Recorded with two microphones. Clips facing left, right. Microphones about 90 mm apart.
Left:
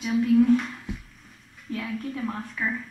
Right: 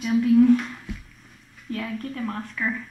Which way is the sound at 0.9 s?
20° left (ahead or behind).